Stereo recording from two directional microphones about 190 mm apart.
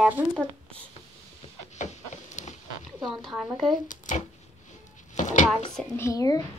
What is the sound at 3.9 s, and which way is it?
Speech, 40° left (ahead or behind).